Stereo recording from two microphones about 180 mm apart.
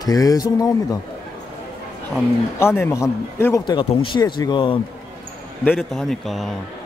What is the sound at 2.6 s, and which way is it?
A man's voice, 15° left (ahead or behind).